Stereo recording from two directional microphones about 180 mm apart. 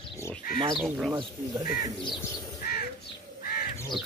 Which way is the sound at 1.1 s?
20° right (ahead or behind).